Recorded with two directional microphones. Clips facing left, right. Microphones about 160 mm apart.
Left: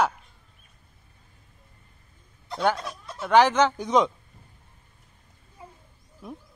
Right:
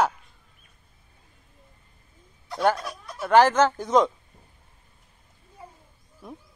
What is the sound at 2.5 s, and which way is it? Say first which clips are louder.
Speech: right 2 dB; 5° right (ahead or behind).